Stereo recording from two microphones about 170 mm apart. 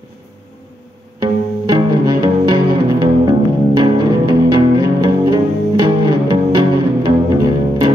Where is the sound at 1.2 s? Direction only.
25° right (ahead or behind).